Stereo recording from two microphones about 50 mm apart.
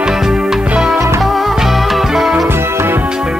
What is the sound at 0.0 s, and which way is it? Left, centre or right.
Music, centre.